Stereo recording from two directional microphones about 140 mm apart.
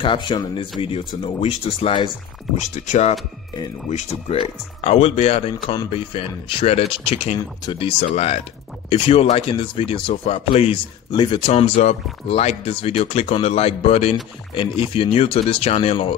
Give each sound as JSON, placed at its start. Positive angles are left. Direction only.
{"t": 0.0, "sound": "speech", "side_deg": 35}
{"t": 2.5, "sound": "speech", "side_deg": 60}
{"t": 7.3, "sound": "speech", "side_deg": 30}
{"t": 8.0, "sound": "speech", "side_deg": 50}
{"t": 11.5, "sound": "speech", "side_deg": 50}